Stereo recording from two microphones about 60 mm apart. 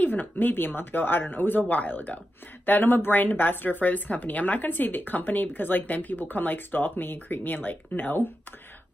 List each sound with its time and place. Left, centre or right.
0.0 s speech: left